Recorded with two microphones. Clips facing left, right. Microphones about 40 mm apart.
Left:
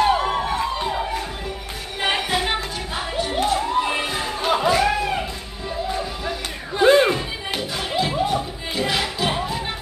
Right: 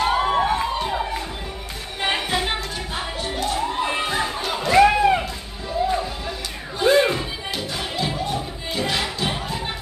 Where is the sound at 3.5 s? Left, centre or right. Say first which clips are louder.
Left 1 dB; centre.